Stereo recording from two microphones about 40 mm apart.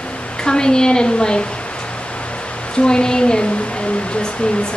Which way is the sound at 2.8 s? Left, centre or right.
Left.